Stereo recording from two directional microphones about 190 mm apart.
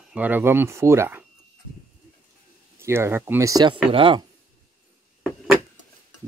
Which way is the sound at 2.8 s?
15° right (ahead or behind).